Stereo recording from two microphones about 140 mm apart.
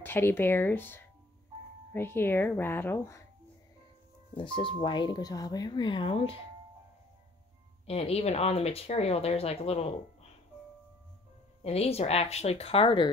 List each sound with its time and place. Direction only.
0.0 s speech: 15° left (ahead or behind)
4.4 s speech: 40° left (ahead or behind)
7.8 s speech: 45° left (ahead or behind)
11.6 s speech: 45° left (ahead or behind)